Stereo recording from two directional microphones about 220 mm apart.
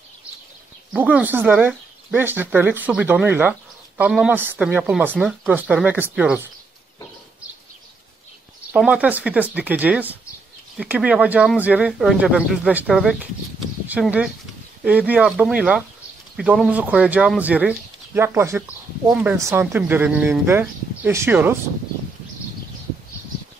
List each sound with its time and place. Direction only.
0.9 s speech: 5° right (ahead or behind)
8.7 s speech: 5° right (ahead or behind)